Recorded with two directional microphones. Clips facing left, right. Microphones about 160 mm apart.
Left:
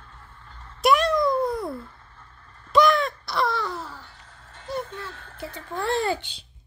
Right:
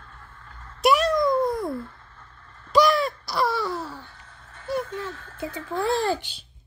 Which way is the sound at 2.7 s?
Centre (ahead or behind).